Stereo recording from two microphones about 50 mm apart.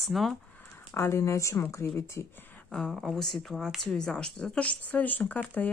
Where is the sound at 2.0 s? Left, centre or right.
Left.